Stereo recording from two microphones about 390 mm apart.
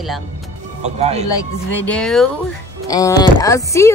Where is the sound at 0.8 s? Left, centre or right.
Centre.